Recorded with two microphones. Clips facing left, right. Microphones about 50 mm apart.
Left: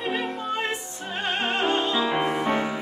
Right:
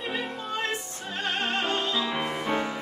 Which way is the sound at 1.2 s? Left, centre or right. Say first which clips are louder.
Left 3 dB; left.